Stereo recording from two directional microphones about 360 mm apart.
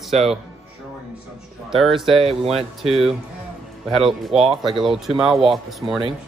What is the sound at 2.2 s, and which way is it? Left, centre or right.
Speech, centre.